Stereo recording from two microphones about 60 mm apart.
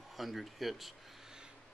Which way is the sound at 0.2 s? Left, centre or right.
Centre.